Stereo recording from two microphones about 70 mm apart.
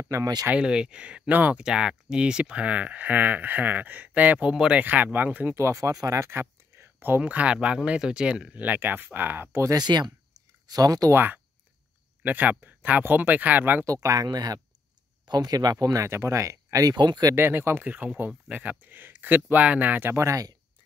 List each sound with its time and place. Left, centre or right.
0.6 s speech: centre
1.6 s speech: centre
4.8 s speech: right
5.6 s speech: right
6.8 s speech: right
9.8 s speech: right
10.7 s speech: right
11.1 s speech: right
14.2 s speech: right
16.1 s speech: right
16.9 s speech: right
17.4 s speech: right
20.2 s speech: right